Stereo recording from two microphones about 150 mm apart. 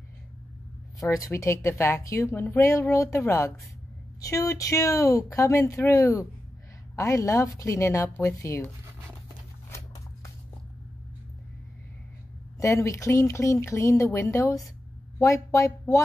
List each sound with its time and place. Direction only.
1.1 s a woman's voice: 20° left (ahead or behind)
12.5 s a woman's voice: 20° left (ahead or behind)